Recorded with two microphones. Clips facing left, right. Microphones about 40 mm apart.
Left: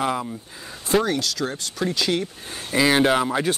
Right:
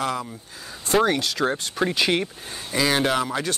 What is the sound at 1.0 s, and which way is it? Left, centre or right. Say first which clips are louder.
Speech: right 3 dB; right.